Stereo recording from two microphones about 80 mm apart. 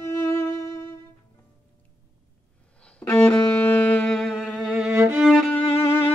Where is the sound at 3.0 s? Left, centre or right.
Left; by 4.3 s centre.